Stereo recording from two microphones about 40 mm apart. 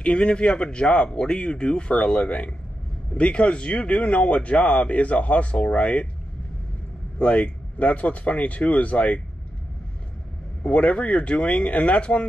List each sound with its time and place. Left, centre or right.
0.0 s speech: left
7.2 s speech: left
10.6 s speech: left